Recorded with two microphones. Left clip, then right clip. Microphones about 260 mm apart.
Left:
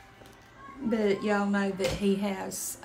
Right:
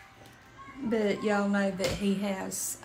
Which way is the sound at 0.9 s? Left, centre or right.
Centre.